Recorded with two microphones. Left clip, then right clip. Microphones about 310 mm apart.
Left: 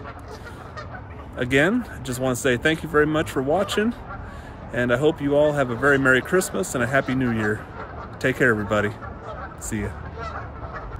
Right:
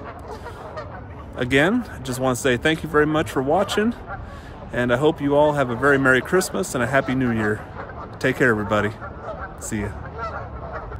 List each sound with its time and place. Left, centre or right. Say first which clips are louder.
1.3 s speech: right 1 dB; centre
8.2 s speech: right 1 dB; centre
10.1 s goose: right 3 dB; right